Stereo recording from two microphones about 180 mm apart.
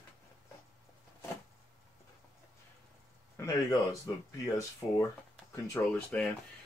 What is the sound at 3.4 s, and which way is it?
Speech, 20° left (ahead or behind).